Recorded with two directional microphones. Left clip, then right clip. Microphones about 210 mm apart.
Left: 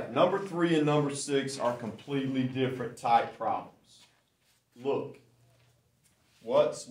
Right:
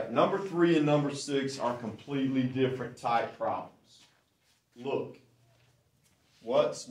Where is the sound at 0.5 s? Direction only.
30° left (ahead or behind).